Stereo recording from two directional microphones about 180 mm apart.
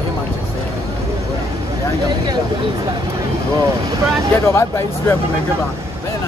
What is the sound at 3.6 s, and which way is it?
Speech, 20° right (ahead or behind).